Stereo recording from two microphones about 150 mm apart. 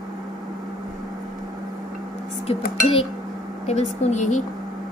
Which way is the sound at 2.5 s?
40° left (ahead or behind).